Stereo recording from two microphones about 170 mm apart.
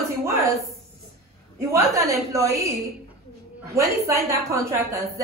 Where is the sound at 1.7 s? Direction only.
20° right (ahead or behind).